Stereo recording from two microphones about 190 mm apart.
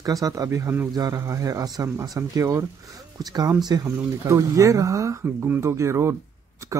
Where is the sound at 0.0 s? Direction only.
20° right (ahead or behind).